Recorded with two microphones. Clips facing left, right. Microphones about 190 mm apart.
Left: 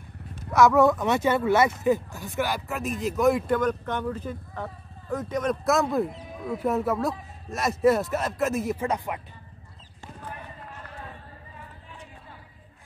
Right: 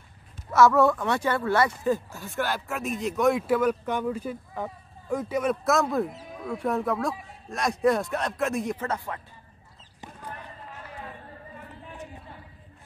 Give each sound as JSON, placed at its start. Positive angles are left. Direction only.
{"t": 0.5, "sound": "speech", "side_deg": 15}
{"t": 2.7, "sound": "speech", "side_deg": 0}
{"t": 8.8, "sound": "speech", "side_deg": 15}